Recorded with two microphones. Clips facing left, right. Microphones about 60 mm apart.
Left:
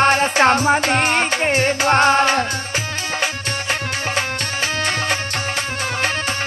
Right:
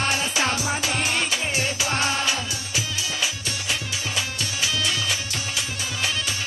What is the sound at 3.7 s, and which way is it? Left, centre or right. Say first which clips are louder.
Music: left 7 dB; left.